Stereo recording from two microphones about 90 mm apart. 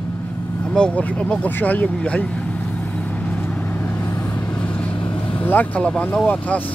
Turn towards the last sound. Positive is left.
turn(degrees=15)  # may be behind; listen again after turning